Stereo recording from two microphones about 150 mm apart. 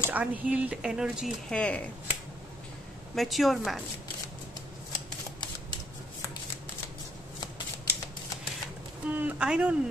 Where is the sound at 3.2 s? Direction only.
Centre (ahead or behind).